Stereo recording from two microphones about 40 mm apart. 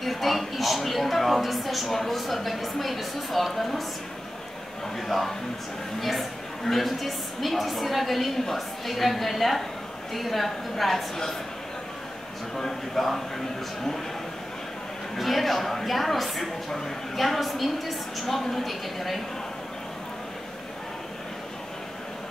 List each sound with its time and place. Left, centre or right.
0.0 s a sound: centre
5.0 s speech: centre
12.5 s speech: centre
15.1 s speech: centre